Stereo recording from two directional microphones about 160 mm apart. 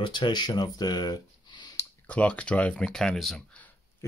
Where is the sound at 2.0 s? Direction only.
10° left (ahead or behind).